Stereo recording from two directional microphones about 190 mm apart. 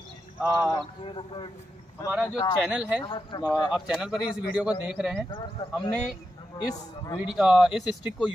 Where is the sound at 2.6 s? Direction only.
5° right (ahead or behind).